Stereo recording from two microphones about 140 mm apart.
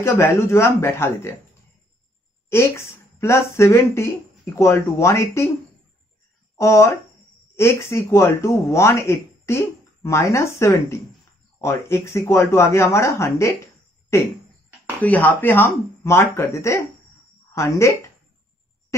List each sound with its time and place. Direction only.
0.0 s speech: 20° left (ahead or behind)
2.5 s speech: 20° left (ahead or behind)
6.6 s speech: 20° left (ahead or behind)